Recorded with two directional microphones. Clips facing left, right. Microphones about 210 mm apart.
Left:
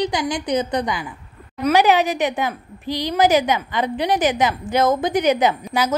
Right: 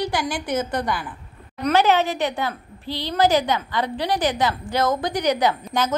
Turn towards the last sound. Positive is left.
turn(degrees=10)  # may be behind; listen again after turning